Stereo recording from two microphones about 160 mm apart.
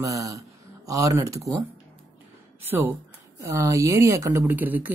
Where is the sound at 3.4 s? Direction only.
20° right (ahead or behind).